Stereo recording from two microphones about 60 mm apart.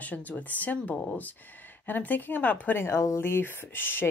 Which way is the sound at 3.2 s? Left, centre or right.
Left.